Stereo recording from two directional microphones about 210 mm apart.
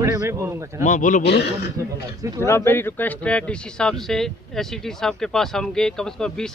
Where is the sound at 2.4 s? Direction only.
10° left (ahead or behind).